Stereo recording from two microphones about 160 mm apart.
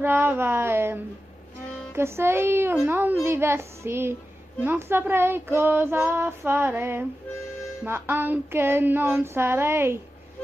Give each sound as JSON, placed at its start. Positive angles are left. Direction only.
{"t": 0.0, "sound": "child singing", "side_deg": -10}